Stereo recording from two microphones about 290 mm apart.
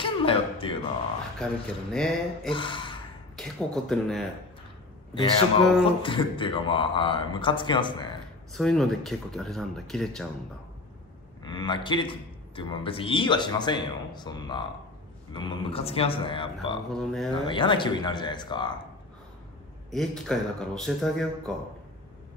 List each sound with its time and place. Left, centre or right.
0.0 s music: centre
1.4 s speech: centre
2.5 s speech: centre
3.3 s speech: centre
5.9 s a man's voice: centre
8.5 s speech: centre
11.4 s a man's voice: centre
16.9 s speech: centre
17.3 s a man's voice: centre
19.9 s speech: centre